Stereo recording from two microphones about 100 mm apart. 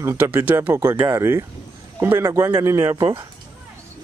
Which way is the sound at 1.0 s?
30° right (ahead or behind).